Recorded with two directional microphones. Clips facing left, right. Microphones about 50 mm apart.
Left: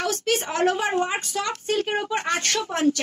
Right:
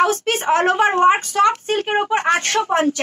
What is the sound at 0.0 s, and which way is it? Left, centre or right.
Speech, right.